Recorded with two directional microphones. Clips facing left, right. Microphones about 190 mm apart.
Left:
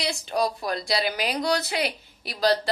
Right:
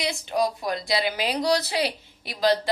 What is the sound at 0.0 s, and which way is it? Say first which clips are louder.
A woman's voice: right 1 dB; 20° right (ahead or behind).